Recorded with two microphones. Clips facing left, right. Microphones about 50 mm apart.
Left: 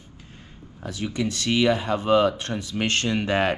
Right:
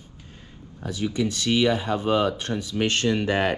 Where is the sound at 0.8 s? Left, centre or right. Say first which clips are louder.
Right 2 dB; left.